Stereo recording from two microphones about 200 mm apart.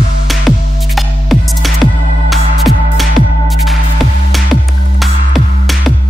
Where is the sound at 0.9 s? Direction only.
Centre (ahead or behind).